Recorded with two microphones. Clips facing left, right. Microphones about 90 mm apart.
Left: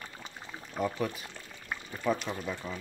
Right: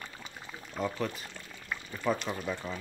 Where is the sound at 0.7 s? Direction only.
10° left (ahead or behind).